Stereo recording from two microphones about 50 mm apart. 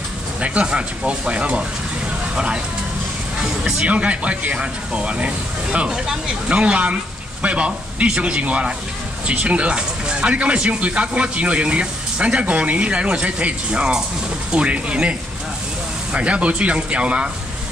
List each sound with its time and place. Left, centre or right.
0.4 s speech: right
3.7 s speech: right